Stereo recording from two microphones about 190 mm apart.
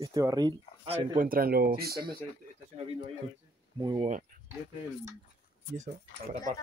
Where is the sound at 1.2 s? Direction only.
50° right (ahead or behind).